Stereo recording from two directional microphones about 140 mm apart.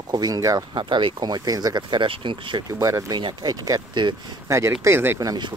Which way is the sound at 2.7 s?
20° right (ahead or behind).